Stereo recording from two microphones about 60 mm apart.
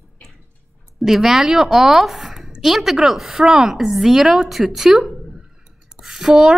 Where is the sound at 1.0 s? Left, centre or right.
Centre.